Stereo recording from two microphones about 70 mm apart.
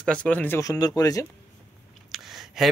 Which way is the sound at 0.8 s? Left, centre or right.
Left.